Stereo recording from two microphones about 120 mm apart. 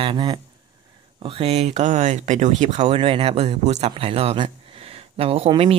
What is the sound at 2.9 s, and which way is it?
Speech, 50° right (ahead or behind).